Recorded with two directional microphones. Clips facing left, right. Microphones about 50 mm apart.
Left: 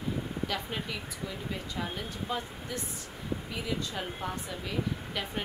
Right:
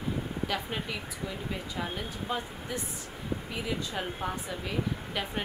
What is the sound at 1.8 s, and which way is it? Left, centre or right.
Speech, centre.